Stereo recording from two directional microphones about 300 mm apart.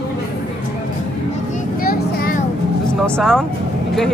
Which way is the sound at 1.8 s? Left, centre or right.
Left.